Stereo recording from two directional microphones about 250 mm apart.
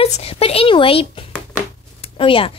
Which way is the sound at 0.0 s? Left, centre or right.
Left.